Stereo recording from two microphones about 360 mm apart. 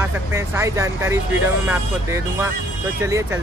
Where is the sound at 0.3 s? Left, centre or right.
Centre.